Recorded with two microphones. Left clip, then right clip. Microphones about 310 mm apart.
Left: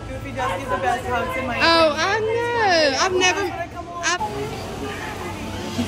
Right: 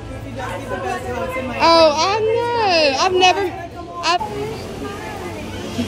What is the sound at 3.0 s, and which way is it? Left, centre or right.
Speech, centre.